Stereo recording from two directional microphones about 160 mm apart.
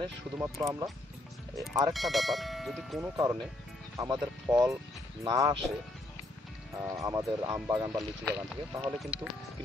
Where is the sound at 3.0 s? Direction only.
15° right (ahead or behind).